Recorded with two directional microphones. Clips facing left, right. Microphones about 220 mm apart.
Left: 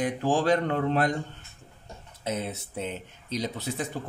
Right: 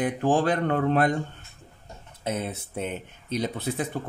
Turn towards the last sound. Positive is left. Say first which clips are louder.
# right 3 dB
turn(degrees=-55)  # may be behind; listen again after turning